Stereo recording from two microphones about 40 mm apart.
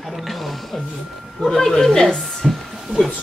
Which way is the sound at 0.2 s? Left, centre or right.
Centre.